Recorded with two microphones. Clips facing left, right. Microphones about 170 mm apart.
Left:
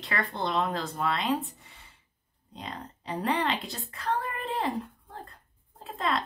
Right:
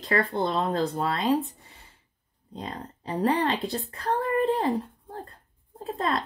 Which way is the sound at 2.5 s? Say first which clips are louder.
Right 4 dB; 35° right (ahead or behind).